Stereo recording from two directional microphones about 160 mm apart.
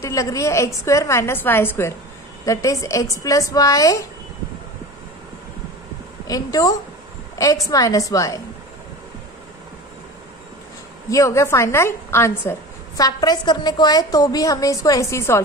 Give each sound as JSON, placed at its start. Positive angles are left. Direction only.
{"t": 0.0, "sound": "a woman's voice", "side_deg": 20}
{"t": 6.2, "sound": "a woman's voice", "side_deg": 25}
{"t": 11.1, "sound": "a woman's voice", "side_deg": 20}